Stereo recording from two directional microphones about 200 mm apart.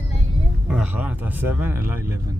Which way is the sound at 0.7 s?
5° right (ahead or behind).